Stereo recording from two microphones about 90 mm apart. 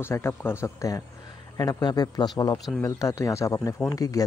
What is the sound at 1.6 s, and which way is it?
A man's voice, 50° left (ahead or behind).